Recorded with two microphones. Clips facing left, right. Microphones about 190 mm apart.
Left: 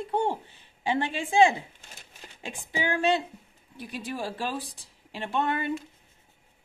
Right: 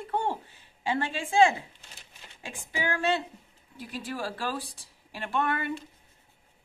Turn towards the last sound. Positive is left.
turn(degrees=20)  # may be behind; listen again after turning